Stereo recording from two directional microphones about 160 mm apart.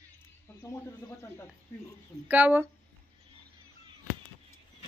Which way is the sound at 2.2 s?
10° right (ahead or behind).